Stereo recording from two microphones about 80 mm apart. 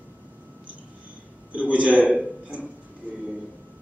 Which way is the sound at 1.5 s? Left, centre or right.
Centre.